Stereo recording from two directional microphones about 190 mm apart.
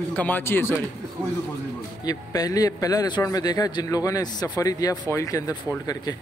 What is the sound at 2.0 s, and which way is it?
A man's voice, 20° left (ahead or behind).